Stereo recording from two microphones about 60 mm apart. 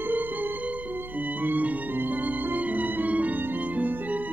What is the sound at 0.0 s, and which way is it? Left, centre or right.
Music, right.